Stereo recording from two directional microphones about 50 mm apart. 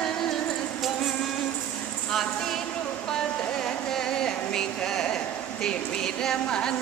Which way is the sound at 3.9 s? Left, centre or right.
Centre.